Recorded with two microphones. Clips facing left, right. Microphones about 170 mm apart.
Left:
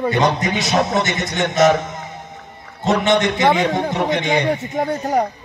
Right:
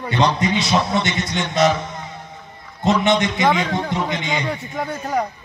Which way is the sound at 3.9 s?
70° left (ahead or behind).